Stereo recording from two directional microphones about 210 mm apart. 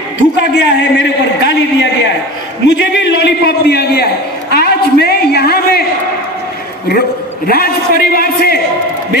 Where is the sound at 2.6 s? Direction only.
55° left (ahead or behind).